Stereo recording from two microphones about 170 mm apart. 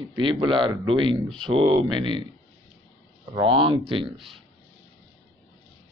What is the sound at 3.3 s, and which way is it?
Speech, 30° right (ahead or behind).